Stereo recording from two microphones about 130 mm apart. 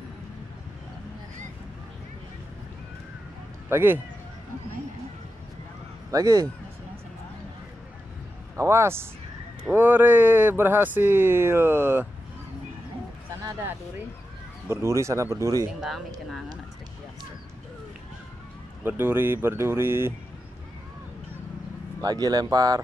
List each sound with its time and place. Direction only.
3.6 s speech: 15° right (ahead or behind)
6.1 s speech: 25° right (ahead or behind)
8.5 s speech: 20° right (ahead or behind)
14.7 s speech: 20° right (ahead or behind)
18.9 s speech: 15° right (ahead or behind)
22.0 s speech: 30° right (ahead or behind)